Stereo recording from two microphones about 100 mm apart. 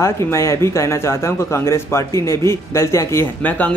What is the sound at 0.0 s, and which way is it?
A man's voice, 30° left (ahead or behind).